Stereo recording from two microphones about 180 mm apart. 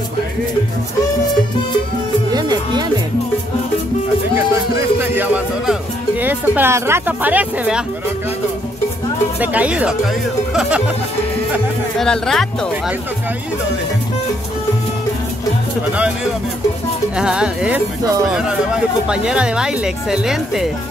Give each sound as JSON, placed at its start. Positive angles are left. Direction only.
{"t": 2.3, "sound": "music", "side_deg": -25}
{"t": 4.7, "sound": "music", "side_deg": -10}
{"t": 9.4, "sound": "speech", "side_deg": -10}
{"t": 12.0, "sound": "speech", "side_deg": 0}
{"t": 17.2, "sound": "speech", "side_deg": -5}